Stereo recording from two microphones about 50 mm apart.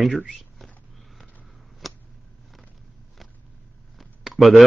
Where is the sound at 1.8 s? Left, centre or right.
Centre.